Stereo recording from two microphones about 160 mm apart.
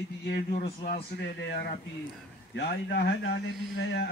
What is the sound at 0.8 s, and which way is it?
A man's voice, 80° left.